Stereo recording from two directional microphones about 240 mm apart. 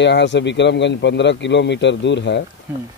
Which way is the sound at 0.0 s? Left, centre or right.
Left.